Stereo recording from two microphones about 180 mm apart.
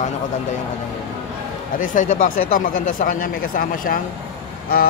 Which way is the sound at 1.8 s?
45° left (ahead or behind).